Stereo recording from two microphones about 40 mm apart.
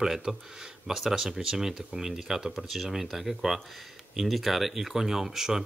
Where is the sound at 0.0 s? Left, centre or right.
Centre.